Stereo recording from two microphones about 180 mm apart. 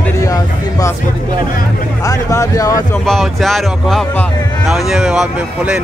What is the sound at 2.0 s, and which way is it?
Speech, 20° left (ahead or behind).